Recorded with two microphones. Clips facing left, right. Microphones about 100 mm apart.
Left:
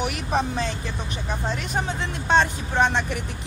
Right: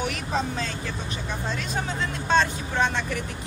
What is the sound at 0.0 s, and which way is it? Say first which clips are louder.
Speech: left 3 dB; 15° left (ahead or behind).